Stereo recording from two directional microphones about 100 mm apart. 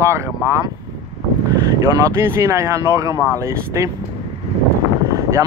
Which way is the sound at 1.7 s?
25° right (ahead or behind).